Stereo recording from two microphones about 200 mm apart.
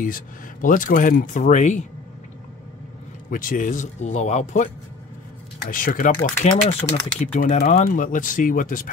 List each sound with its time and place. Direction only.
0.0 s speech: 40° left (ahead or behind)
3.3 s speech: 45° left (ahead or behind)
5.7 s speech: 45° left (ahead or behind)
6.8 s speech: 30° left (ahead or behind)